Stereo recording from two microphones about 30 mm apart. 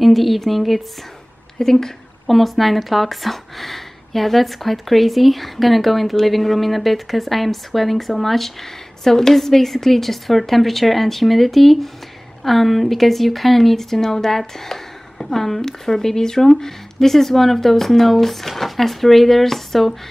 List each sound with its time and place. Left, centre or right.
0.0 s speech: centre
1.6 s speech: centre
2.2 s speech: centre
9.0 s speech: centre